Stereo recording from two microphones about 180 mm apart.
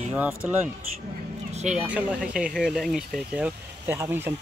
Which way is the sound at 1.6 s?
40° right (ahead or behind).